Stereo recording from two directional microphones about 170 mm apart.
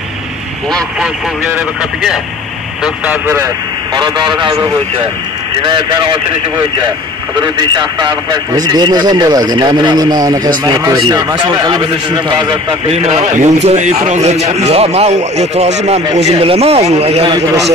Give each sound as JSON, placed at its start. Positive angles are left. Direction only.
{"t": 0.7, "sound": "speech", "side_deg": 0}
{"t": 2.8, "sound": "speech", "side_deg": -10}
{"t": 3.9, "sound": "a man's voice", "side_deg": -25}
{"t": 7.3, "sound": "a man's voice", "side_deg": -25}